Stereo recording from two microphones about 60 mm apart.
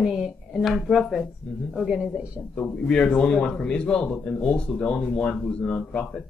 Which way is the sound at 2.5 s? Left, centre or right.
Centre.